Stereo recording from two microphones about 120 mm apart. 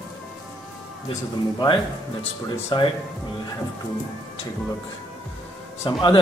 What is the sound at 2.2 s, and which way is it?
Speech, 50° left (ahead or behind).